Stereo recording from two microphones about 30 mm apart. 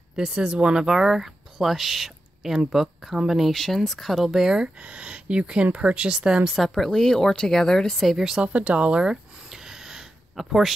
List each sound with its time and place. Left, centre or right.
0.3 s speech: right
0.8 s speech: centre
3.5 s speech: centre
4.1 s speech: centre
4.8 s speech: right
6.1 s speech: right
6.7 s speech: centre
8.6 s speech: right
9.0 s a sound: right
10.3 s speech: centre